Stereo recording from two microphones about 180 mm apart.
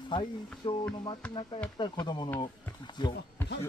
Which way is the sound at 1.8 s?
25° left (ahead or behind).